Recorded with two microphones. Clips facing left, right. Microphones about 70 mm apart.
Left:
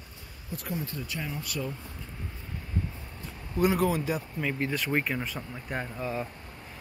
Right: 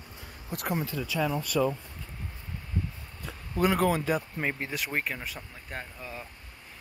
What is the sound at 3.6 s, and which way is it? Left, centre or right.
Speech, right.